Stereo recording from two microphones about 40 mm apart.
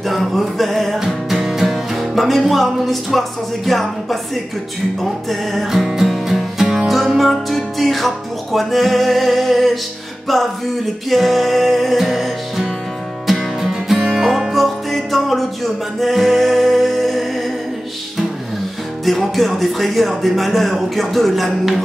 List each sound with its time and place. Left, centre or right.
0.0 s music: centre
0.9 s music: centre
1.7 s music: centre
7.2 s speech: centre
10.2 s music: centre
11.1 s speech: centre
13.3 s music: centre
13.9 s music: centre
14.2 s music: centre
19.0 s speech: centre